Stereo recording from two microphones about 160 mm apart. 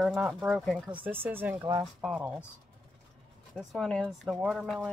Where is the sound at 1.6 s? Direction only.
25° right (ahead or behind).